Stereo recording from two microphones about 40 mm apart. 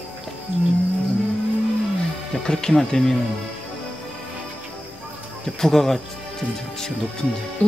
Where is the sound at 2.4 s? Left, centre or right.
Centre.